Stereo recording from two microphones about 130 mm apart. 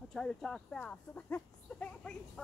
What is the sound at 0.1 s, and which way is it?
Speech, 5° left (ahead or behind).